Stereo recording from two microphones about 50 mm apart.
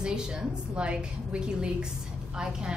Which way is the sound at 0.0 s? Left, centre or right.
Centre.